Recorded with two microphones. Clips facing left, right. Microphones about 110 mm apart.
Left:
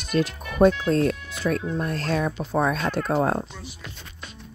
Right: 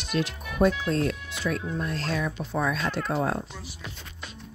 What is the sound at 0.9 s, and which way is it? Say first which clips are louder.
Speech: left 5 dB; 45° left (ahead or behind).